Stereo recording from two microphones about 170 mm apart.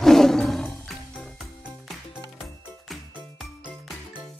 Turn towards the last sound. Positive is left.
turn(degrees=0)  # may be behind; listen again after turning